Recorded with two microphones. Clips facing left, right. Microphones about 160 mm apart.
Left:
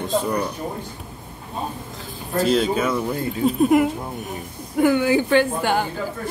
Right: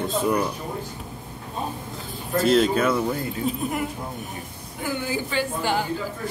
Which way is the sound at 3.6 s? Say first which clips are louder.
Left 11 dB; 75° left (ahead or behind).